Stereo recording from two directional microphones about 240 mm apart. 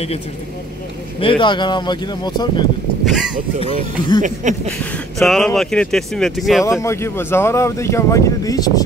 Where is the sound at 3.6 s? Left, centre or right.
Left.